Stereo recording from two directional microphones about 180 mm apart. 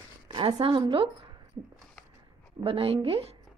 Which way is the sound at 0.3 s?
30° right (ahead or behind).